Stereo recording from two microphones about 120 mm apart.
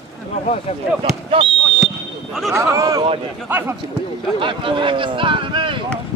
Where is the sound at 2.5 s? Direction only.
25° right (ahead or behind).